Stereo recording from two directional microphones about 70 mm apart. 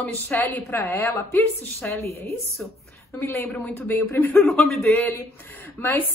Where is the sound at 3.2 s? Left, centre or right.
Left.